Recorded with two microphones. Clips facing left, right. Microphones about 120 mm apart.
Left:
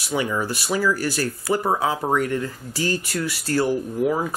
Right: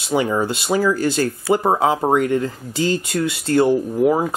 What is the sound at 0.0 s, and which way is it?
Speech, 25° right (ahead or behind).